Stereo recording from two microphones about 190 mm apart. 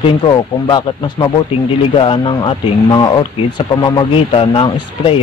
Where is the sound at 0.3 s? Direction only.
20° left (ahead or behind).